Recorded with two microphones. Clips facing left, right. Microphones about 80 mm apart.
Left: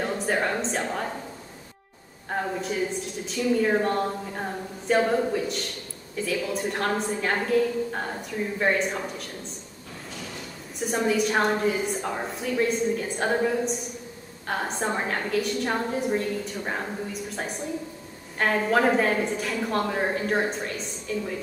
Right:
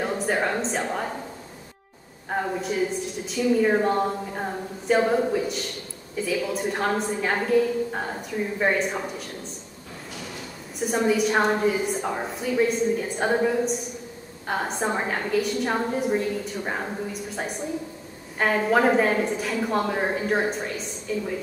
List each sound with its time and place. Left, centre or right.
0.0 s a woman's voice: centre
2.2 s a woman's voice: centre
10.8 s a woman's voice: centre